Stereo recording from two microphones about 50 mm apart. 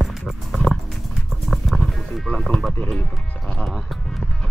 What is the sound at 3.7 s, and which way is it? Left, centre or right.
Music, centre.